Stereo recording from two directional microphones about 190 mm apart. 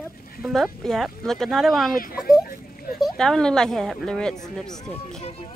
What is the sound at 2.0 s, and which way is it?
Speech, 50° left (ahead or behind).